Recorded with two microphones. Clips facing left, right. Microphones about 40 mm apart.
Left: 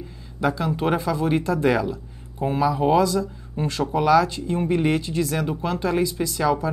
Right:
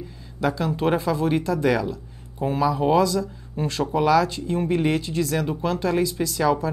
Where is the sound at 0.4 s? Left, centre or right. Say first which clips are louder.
Even; centre.